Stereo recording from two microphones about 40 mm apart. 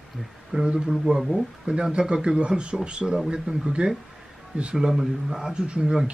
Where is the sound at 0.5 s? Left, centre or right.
Right.